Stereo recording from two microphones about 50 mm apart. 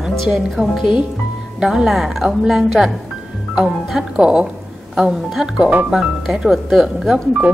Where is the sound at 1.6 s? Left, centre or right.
Centre.